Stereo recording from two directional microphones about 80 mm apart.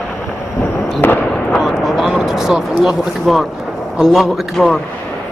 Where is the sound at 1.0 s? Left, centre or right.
Left.